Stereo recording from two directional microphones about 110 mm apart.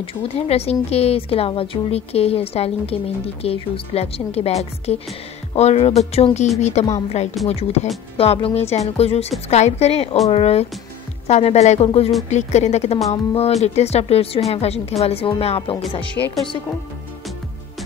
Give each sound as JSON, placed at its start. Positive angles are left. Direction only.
{"t": 0.0, "sound": "a woman's voice", "side_deg": 55}
{"t": 7.4, "sound": "speech", "side_deg": 70}
{"t": 8.2, "sound": "speech", "side_deg": 60}
{"t": 9.5, "sound": "speech", "side_deg": 80}
{"t": 11.2, "sound": "speech", "side_deg": 85}
{"t": 12.3, "sound": "speech", "side_deg": 90}
{"t": 13.1, "sound": "speech", "side_deg": 75}
{"t": 16.2, "sound": "speech", "side_deg": 30}